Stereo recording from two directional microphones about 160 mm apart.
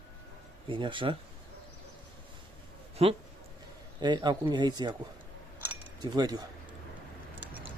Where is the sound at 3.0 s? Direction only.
40° right (ahead or behind).